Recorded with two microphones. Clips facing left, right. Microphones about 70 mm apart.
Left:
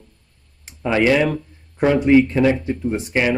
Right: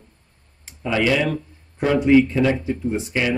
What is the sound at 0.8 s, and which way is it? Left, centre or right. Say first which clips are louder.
Speech: left 3 dB; left.